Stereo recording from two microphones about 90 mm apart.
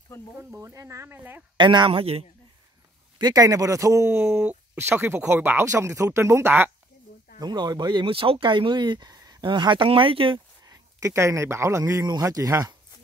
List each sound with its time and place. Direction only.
0.4 s speech: 30° right (ahead or behind)
1.6 s speech: 60° right (ahead or behind); by 2.2 s 90° right
3.2 s speech: 45° right (ahead or behind); by 5.7 s 25° right (ahead or behind)
5.7 s speech: 35° right (ahead or behind)
7.3 s speech: 50° right (ahead or behind)
9.4 s speech: 65° right (ahead or behind)
10.6 s speech: 40° right (ahead or behind)
11.8 s speech: 40° right (ahead or behind)